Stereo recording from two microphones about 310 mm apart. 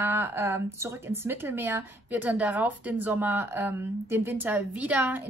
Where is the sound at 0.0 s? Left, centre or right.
Centre.